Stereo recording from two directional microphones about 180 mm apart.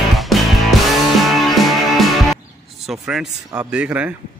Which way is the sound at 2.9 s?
5° right (ahead or behind).